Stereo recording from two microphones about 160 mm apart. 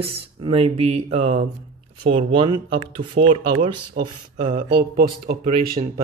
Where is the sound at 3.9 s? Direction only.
50° right (ahead or behind).